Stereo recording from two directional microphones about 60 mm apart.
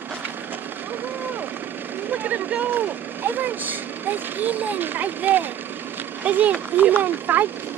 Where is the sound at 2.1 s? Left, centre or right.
Right.